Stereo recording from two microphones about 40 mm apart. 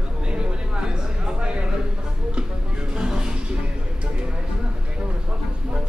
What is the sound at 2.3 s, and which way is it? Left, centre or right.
Music, right.